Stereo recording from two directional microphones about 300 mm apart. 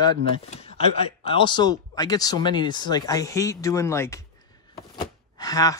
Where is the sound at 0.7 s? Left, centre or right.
Right.